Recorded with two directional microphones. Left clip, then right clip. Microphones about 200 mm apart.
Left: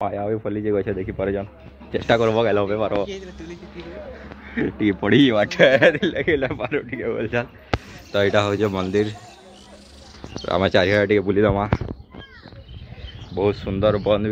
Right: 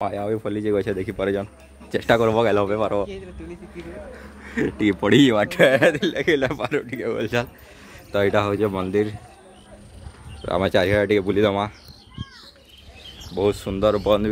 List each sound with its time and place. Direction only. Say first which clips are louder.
0.0 s speech: left 1 dB; 10° right (ahead or behind)
4.6 s speech: even; 10° right (ahead or behind)
6.2 s speech: right 1 dB; 20° right (ahead or behind); by 9.1 s 5° right (ahead or behind)
10.4 s speech: left 2 dB; centre (ahead or behind)
13.3 s speech: even; 15° right (ahead or behind)